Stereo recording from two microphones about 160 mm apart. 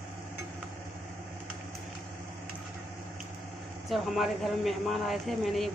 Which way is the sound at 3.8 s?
Centre (ahead or behind).